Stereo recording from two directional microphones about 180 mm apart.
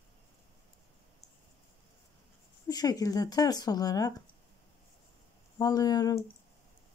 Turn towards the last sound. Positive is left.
turn(degrees=20)  # may be behind; listen again after turning